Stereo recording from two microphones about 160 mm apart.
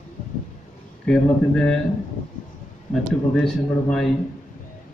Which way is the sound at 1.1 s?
5° left (ahead or behind).